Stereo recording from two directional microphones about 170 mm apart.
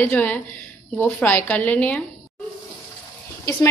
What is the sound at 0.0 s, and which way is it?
A woman's voice, 10° left (ahead or behind).